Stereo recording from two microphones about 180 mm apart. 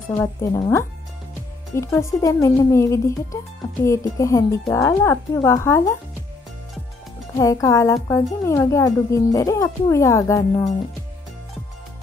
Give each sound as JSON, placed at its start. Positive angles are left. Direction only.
{"t": 0.1, "sound": "a woman's voice", "side_deg": 15}
{"t": 7.3, "sound": "a woman's voice", "side_deg": 15}